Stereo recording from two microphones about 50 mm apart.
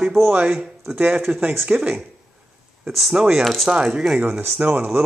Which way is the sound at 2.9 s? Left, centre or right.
Centre.